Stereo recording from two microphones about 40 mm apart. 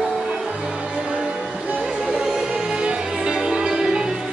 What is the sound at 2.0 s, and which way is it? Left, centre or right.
Music, centre.